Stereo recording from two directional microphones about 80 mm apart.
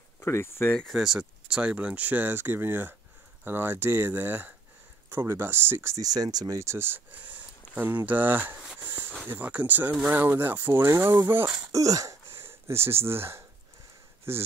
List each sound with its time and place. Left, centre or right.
0.2 s speech: left
0.8 s speech: centre; by 5.9 s right
5.9 s speech: right
6.6 s speech: right
9.9 s speech: centre
10.2 s speech: right
11.7 s speech: right